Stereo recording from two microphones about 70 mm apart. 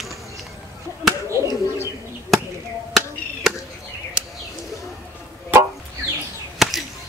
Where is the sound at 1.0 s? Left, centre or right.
Centre.